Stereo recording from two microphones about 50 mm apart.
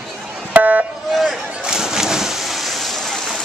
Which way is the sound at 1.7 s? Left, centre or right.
Centre.